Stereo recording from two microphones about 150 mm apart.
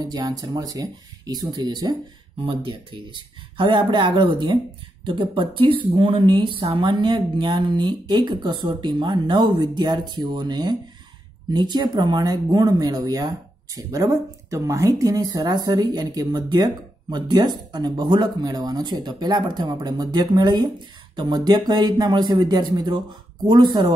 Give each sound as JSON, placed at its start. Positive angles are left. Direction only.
{"t": 0.0, "sound": "speech", "side_deg": -25}